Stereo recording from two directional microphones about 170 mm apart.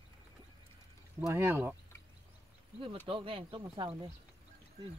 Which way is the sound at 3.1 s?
30° right (ahead or behind).